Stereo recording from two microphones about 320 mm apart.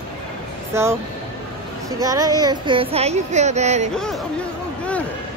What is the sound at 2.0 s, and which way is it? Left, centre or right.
Speech, centre.